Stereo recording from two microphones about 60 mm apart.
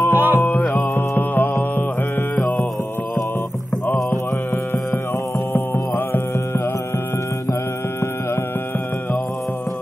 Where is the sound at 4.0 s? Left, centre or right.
Left.